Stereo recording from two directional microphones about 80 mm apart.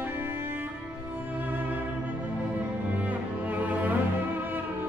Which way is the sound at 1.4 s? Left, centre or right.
Right.